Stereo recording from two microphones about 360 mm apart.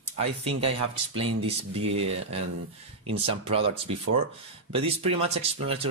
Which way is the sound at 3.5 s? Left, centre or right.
Centre.